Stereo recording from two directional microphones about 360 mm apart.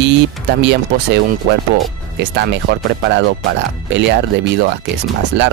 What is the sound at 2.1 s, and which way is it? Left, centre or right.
Speech, right.